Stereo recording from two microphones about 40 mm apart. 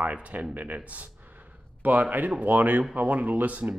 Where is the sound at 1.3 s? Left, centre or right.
Right.